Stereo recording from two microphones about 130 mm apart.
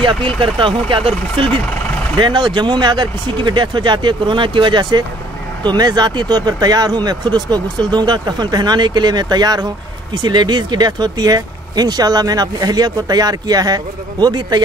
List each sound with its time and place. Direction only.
0.0 s speech: 40° right (ahead or behind)